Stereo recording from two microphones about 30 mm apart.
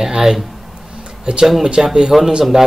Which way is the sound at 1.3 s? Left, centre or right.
Right.